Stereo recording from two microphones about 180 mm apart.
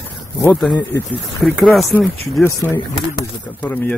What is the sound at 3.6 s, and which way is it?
Speech, 10° left (ahead or behind).